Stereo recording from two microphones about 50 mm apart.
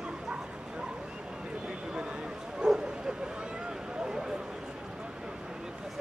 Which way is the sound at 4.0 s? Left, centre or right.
Centre.